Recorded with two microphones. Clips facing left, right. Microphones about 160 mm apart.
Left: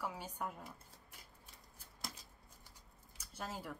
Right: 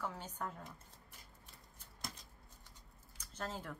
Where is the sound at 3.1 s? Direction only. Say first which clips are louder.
Right 2 dB; 10° left (ahead or behind).